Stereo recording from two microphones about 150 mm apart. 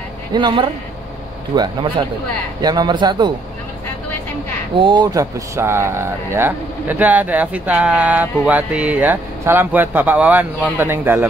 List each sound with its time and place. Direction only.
0.3 s a man's voice: 30° right (ahead or behind)
4.7 s speech: 30° right (ahead or behind); by 11.2 s 15° right (ahead or behind)